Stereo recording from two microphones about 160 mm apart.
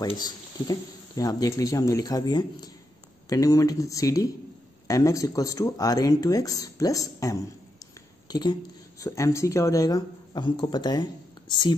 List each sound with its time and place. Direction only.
0.0 s speech: 25° left (ahead or behind)